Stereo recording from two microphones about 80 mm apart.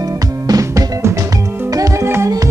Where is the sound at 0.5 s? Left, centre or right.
Right.